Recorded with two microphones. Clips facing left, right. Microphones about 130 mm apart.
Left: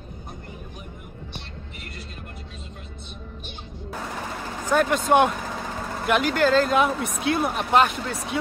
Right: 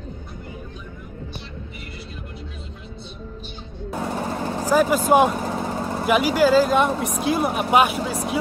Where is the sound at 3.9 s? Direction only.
30° right (ahead or behind).